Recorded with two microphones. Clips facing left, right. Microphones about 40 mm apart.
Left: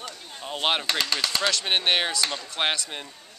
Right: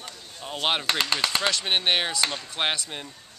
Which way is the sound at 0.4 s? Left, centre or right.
Centre.